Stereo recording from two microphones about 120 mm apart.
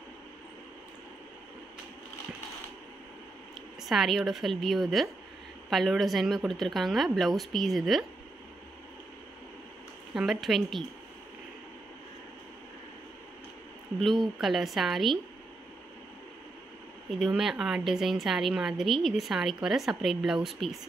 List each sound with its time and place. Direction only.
3.8 s a woman's voice: centre (ahead or behind)
10.1 s a woman's voice: 5° right (ahead or behind)
14.4 s a woman's voice: centre (ahead or behind)
17.1 s a woman's voice: 5° right (ahead or behind)